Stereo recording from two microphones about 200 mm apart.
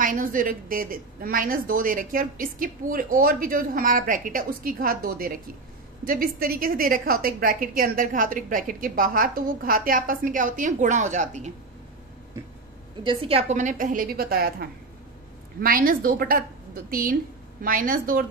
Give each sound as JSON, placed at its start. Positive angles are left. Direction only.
{"t": 0.0, "sound": "a woman's voice", "side_deg": -45}
{"t": 13.0, "sound": "a woman's voice", "side_deg": -25}